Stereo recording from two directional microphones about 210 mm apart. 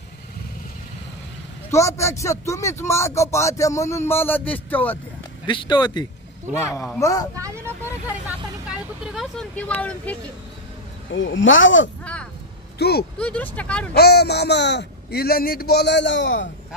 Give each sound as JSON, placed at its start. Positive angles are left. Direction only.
{"t": 1.7, "sound": "speech", "side_deg": 15}
{"t": 5.5, "sound": "speech", "side_deg": 20}
{"t": 7.3, "sound": "speech", "side_deg": -15}
{"t": 8.6, "sound": "vehicle", "side_deg": -5}
{"t": 11.1, "sound": "speech", "side_deg": 65}
{"t": 12.0, "sound": "a sound", "side_deg": 5}
{"t": 12.7, "sound": "speech", "side_deg": 50}
{"t": 13.2, "sound": "speech", "side_deg": 5}
{"t": 13.9, "sound": "speech", "side_deg": 50}